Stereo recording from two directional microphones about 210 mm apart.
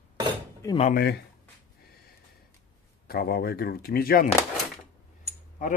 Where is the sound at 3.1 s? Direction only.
45° left (ahead or behind).